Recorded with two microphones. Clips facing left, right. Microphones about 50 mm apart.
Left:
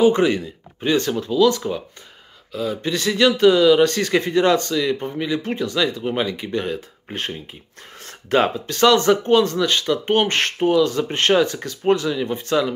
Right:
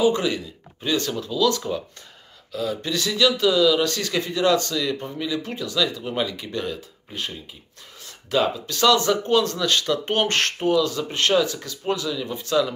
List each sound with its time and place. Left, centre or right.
0.0 s a man's voice: left; by 2.8 s centre
2.8 s a man's voice: left
7.2 s a man's voice: left; by 10.9 s centre
10.9 s speech: left